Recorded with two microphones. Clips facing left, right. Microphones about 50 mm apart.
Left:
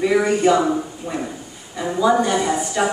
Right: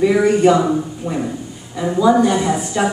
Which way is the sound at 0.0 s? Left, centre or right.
Centre.